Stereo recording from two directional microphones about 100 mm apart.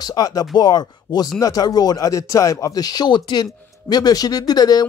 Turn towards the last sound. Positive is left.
turn(degrees=40)  # may be behind; listen again after turning